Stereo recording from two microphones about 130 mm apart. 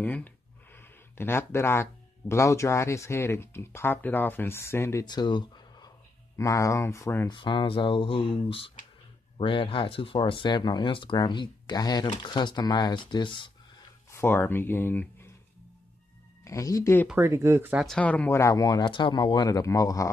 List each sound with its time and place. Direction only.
0.0 s speech: 15° left (ahead or behind)
5.0 s speech: 35° left (ahead or behind)
7.2 s speech: 40° left (ahead or behind)
14.1 s speech: 15° left (ahead or behind)
16.4 s speech: 25° left (ahead or behind)
17.2 s speech: 20° right (ahead or behind)
17.7 s speech: 5° left (ahead or behind); by 20.1 s 25° left (ahead or behind)